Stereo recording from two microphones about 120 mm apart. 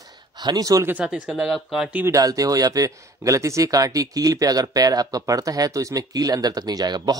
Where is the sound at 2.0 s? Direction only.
30° right (ahead or behind).